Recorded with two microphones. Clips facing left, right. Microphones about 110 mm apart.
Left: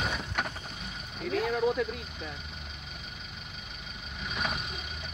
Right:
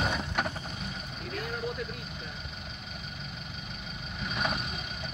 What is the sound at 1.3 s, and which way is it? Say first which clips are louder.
Speech: left 8 dB; 90° left.